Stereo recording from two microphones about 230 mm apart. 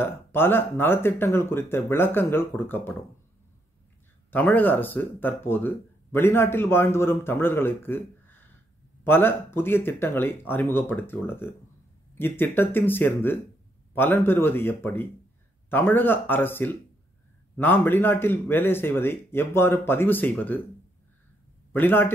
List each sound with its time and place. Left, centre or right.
0.0 s speech: centre
4.3 s speech: centre
21.7 s speech: centre